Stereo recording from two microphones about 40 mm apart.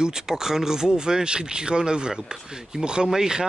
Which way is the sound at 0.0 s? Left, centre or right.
Centre.